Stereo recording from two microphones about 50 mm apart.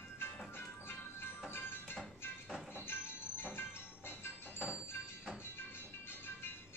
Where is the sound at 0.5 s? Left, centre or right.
Left.